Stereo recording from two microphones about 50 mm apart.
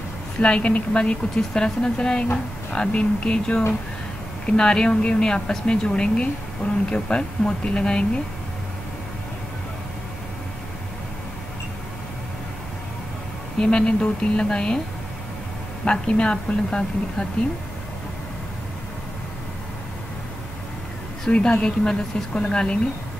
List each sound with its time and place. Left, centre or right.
0.4 s a woman's voice: left
13.6 s a woman's voice: centre
15.8 s a woman's voice: left
21.3 s a woman's voice: centre